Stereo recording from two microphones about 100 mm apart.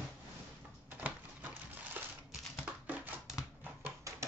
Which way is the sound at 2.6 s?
15° right (ahead or behind).